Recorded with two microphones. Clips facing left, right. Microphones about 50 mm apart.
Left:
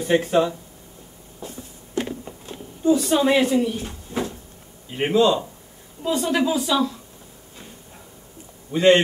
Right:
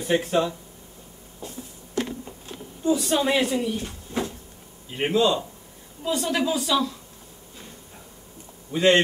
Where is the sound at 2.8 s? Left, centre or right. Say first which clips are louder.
Left 4 dB; centre.